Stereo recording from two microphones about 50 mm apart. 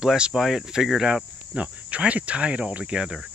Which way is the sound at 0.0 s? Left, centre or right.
Centre.